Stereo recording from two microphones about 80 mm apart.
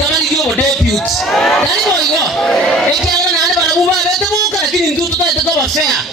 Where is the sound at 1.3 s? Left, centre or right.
Centre.